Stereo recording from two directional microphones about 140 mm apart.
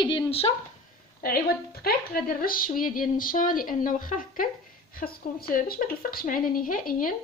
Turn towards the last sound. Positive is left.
turn(degrees=85)